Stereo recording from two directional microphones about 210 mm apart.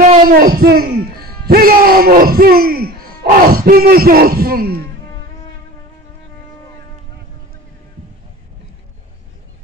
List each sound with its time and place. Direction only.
0.3 s a man's voice: 45° right (ahead or behind)